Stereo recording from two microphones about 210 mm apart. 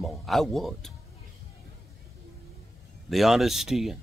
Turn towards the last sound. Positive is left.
turn(degrees=0)  # may be behind; listen again after turning